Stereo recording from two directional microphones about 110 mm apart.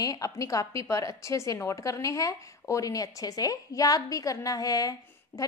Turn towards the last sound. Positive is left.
turn(degrees=35)  # may be behind; listen again after turning